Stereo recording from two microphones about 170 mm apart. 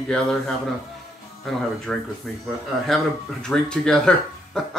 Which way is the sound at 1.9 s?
5° left (ahead or behind).